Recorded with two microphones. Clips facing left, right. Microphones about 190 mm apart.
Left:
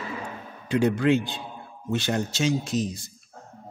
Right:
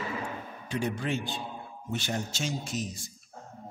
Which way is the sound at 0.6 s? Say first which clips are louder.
Left 10 dB; 65° left (ahead or behind).